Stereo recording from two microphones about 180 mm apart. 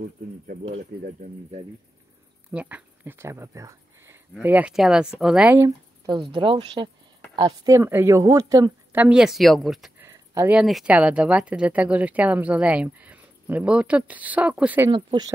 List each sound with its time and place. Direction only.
1.2 s speech: 45° right (ahead or behind)
2.5 s speech: 10° right (ahead or behind)
6.0 s speech: 25° right (ahead or behind)
9.0 s speech: 5° right (ahead or behind)
10.0 s speech: 15° right (ahead or behind)
14.9 s speech: 25° right (ahead or behind)